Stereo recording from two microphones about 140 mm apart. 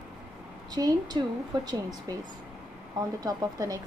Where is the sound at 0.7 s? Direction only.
30° right (ahead or behind).